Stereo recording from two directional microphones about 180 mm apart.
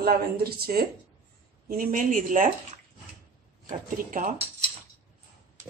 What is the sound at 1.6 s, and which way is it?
Speech, 55° right (ahead or behind).